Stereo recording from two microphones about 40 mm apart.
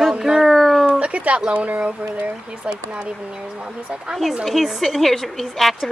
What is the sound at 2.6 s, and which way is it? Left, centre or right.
Speech, right.